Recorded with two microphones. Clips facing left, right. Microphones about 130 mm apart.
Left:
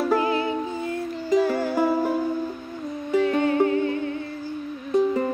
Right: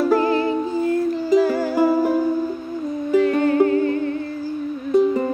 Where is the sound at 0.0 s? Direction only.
40° right (ahead or behind).